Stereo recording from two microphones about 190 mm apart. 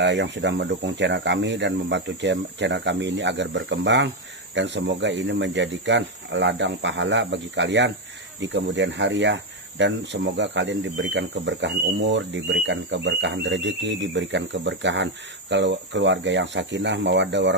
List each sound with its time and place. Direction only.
0.0 s speech: 70° right (ahead or behind)